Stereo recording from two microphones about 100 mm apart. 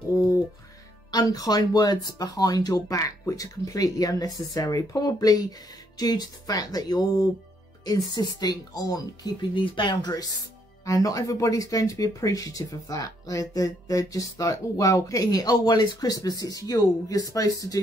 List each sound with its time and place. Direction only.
1.1 s speech: 40° left (ahead or behind)
9.7 s speech: 50° left (ahead or behind); by 17.7 s 35° left (ahead or behind)